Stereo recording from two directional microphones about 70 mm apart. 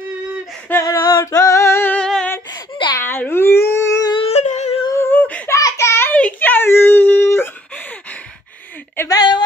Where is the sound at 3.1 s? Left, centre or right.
Left.